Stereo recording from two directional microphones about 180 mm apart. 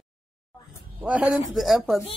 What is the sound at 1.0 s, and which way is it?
Speech, 5° right (ahead or behind).